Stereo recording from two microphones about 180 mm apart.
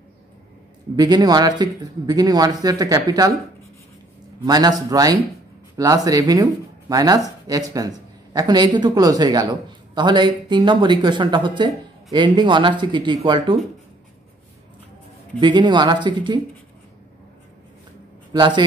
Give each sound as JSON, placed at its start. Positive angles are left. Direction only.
{"t": 0.9, "sound": "speech", "side_deg": -20}
{"t": 4.5, "sound": "speech", "side_deg": -20}
{"t": 15.4, "sound": "speech", "side_deg": -25}
{"t": 18.3, "sound": "a man's voice", "side_deg": -25}